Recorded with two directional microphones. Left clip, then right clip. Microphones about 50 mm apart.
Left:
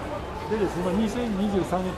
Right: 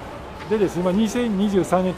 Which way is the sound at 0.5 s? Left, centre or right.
Centre.